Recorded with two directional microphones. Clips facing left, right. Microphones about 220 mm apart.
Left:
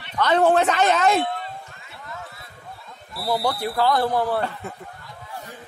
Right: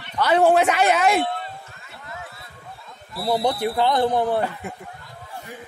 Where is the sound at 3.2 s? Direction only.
20° right (ahead or behind).